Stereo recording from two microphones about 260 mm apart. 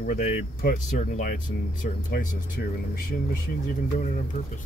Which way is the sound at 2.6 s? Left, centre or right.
Left.